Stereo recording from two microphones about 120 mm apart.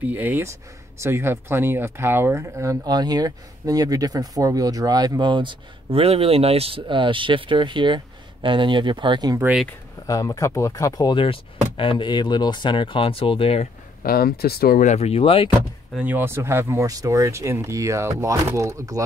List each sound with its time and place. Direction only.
0.0 s speech: 15° right (ahead or behind); by 9.4 s 35° right (ahead or behind)
10.0 s speech: 30° left (ahead or behind)
11.7 s speech: 45° left (ahead or behind)
14.8 s speech: 65° left (ahead or behind); by 15.5 s 50° left (ahead or behind)
16.0 s speech: 15° right (ahead or behind)